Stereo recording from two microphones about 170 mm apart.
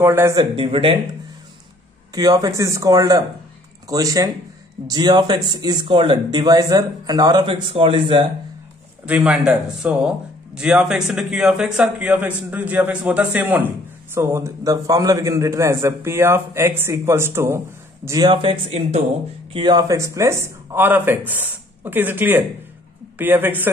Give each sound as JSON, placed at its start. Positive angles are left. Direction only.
{"t": 0.0, "sound": "a man's voice", "side_deg": -15}
{"t": 0.4, "sound": "speech", "side_deg": -30}
{"t": 2.1, "sound": "speech", "side_deg": -20}
{"t": 9.0, "sound": "a man's voice", "side_deg": -10}
{"t": 19.5, "sound": "a man's voice", "side_deg": -25}